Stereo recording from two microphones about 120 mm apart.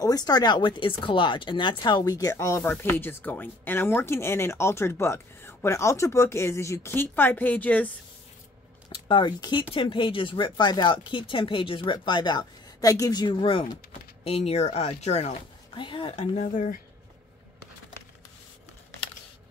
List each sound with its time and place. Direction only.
0.0 s speech: 30° left (ahead or behind); by 7.9 s 10° left (ahead or behind)
9.0 s speech: 40° left (ahead or behind)
14.2 s speech: 60° left (ahead or behind)
15.7 s speech: 45° left (ahead or behind)
16.2 s speech: 90° left